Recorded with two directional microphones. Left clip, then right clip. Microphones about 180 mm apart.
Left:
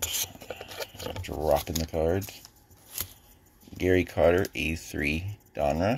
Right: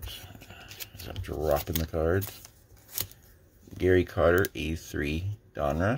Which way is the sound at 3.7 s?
15° right (ahead or behind).